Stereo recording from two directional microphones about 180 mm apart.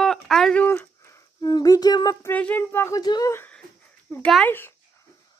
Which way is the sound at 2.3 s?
10° left (ahead or behind).